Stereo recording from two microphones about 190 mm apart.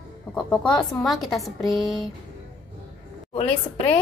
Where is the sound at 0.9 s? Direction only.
Centre (ahead or behind).